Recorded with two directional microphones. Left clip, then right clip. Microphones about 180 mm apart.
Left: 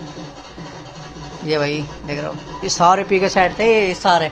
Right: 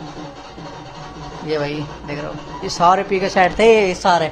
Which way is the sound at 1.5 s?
15° left (ahead or behind).